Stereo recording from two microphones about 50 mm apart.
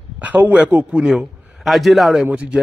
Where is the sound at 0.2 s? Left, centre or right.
Right.